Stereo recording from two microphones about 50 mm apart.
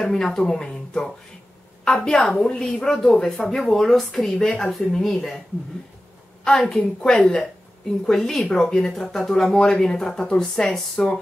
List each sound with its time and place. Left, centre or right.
0.0 s a woman's voice: centre
7.0 s speech: centre